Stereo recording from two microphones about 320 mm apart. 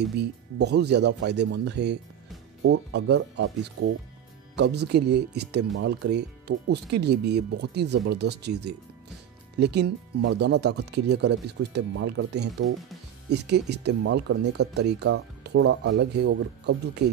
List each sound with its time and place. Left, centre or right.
0.2 s speech: right